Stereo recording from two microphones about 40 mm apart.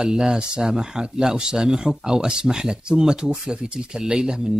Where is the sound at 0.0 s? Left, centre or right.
Centre.